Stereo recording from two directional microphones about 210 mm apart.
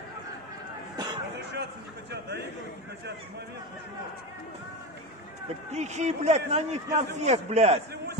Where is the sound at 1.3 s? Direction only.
55° right (ahead or behind).